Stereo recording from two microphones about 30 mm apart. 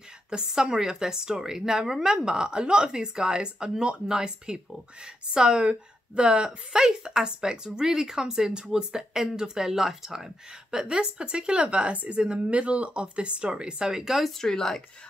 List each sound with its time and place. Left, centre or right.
0.4 s a woman's voice: centre
5.6 s a woman's voice: right
11.6 s speech: right
14.4 s speech: centre